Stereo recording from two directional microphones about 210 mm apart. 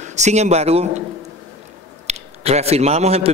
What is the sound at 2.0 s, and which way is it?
A man's voice, 30° right (ahead or behind).